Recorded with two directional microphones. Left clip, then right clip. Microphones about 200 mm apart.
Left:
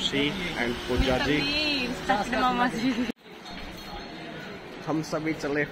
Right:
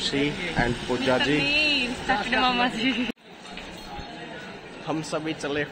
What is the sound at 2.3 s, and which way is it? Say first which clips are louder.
Speech: right 2 dB; 25° right (ahead or behind).